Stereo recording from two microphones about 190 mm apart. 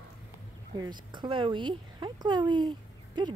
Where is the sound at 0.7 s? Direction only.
20° right (ahead or behind).